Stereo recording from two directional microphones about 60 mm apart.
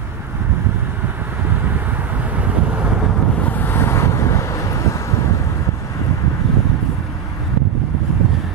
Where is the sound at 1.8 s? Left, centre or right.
Right.